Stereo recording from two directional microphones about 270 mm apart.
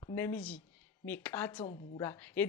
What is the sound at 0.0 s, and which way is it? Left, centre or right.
A woman's voice, centre.